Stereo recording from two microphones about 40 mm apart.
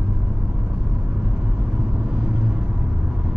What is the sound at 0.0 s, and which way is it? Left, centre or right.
Vehicle, right.